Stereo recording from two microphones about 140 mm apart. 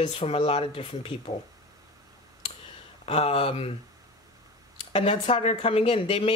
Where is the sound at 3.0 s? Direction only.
45° left (ahead or behind).